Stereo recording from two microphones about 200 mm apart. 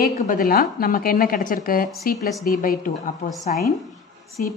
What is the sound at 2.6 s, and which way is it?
Speech, 45° left (ahead or behind).